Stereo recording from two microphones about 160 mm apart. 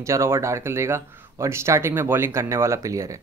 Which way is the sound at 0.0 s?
20° right (ahead or behind).